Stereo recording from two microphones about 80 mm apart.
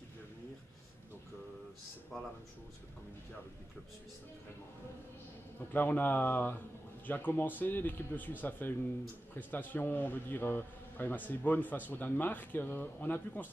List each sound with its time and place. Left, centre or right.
5.7 s a man's voice: left